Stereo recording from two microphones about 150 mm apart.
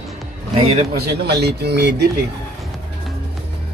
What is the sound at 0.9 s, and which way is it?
A man's voice, 90° right.